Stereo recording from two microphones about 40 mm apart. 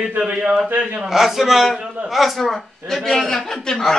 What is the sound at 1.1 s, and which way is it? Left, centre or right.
A man's voice, centre.